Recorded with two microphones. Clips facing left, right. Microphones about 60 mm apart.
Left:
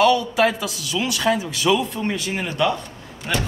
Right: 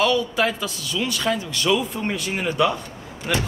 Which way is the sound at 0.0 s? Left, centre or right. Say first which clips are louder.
Left 3 dB; centre.